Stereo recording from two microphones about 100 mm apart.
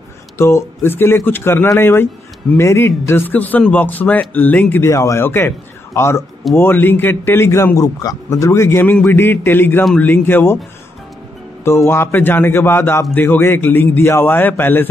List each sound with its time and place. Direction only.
0.4 s a man's voice: 30° left (ahead or behind)
4.9 s speech: 30° left (ahead or behind)
5.2 s a man's voice: 20° left (ahead or behind)
11.6 s a man's voice: 25° left (ahead or behind)